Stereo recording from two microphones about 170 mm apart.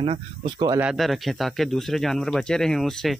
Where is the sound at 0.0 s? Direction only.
35° right (ahead or behind).